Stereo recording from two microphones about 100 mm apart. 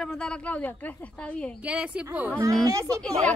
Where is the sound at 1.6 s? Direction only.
15° right (ahead or behind).